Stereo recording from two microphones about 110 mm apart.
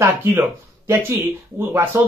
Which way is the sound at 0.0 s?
25° right (ahead or behind).